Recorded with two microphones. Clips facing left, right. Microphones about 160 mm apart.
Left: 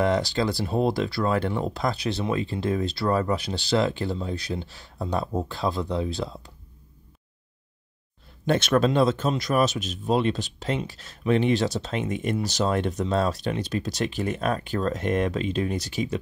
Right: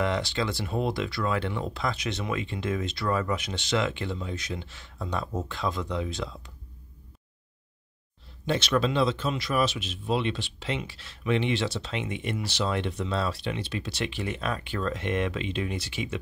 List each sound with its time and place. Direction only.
0.0 s speech: 40° left (ahead or behind)
8.5 s speech: 50° left (ahead or behind)